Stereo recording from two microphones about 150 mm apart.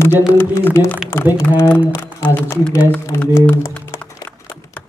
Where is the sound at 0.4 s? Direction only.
15° left (ahead or behind).